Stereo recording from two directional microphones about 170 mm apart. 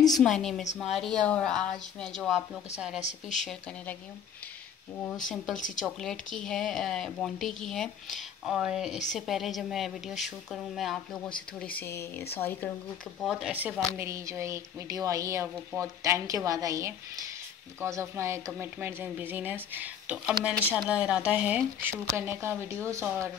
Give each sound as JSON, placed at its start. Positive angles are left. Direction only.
{"t": 0.1, "sound": "speech", "side_deg": 0}
{"t": 3.0, "sound": "speech", "side_deg": 45}
{"t": 5.8, "sound": "speech", "side_deg": 0}
{"t": 11.7, "sound": "speech", "side_deg": 15}
{"t": 13.2, "sound": "speech", "side_deg": 0}